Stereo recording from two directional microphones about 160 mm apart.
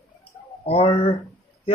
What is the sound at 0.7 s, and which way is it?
Speech, 35° left (ahead or behind).